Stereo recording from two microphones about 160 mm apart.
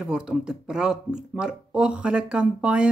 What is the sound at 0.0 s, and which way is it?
Speech, 5° right (ahead or behind).